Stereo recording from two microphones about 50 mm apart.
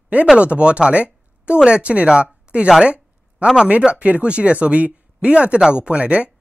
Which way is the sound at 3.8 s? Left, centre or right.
Centre.